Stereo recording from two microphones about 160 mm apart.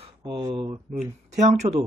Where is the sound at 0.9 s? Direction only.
45° right (ahead or behind).